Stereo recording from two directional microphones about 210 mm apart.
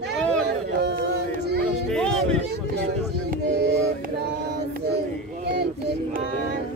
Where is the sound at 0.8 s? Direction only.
55° right (ahead or behind).